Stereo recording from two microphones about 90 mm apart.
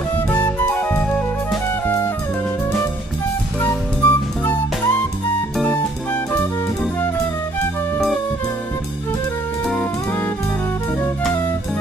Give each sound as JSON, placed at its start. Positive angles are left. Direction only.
{"t": 0.3, "sound": "flute", "side_deg": 20}
{"t": 3.6, "sound": "music", "side_deg": 25}
{"t": 9.7, "sound": "music", "side_deg": 15}